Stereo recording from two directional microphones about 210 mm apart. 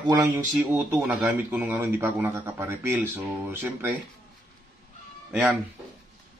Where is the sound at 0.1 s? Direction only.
10° right (ahead or behind).